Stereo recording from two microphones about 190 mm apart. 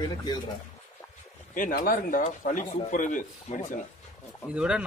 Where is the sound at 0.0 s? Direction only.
20° left (ahead or behind).